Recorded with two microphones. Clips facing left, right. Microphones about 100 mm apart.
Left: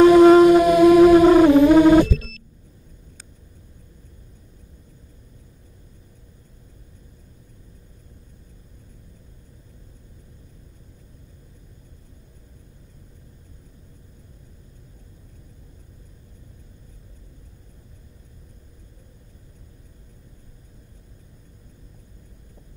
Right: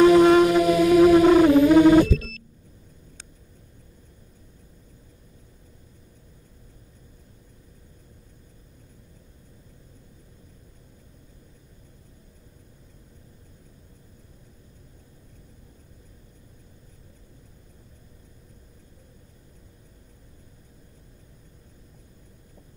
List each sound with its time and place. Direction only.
0.1 s music: 35° left (ahead or behind)